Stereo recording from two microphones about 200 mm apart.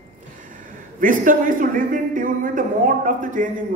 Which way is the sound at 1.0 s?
40° right (ahead or behind).